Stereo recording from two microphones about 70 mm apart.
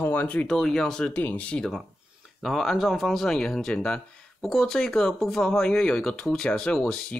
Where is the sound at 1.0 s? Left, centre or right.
Left.